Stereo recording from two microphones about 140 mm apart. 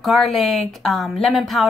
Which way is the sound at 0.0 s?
Centre (ahead or behind).